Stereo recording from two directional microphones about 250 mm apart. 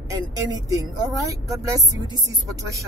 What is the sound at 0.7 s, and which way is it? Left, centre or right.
Speech, centre.